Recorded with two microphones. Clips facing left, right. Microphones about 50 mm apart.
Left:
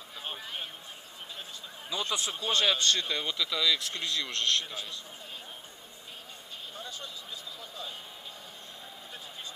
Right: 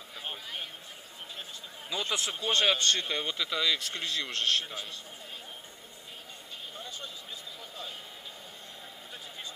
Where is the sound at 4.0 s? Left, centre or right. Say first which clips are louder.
Even; centre.